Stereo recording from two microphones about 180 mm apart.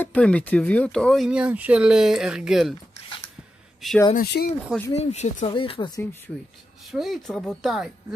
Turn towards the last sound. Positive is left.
turn(degrees=0)  # may be behind; listen again after turning